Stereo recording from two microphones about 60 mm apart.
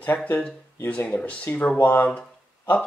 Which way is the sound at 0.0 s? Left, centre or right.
Left.